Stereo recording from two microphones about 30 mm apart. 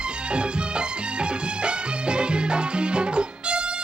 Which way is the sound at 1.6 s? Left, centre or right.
Right.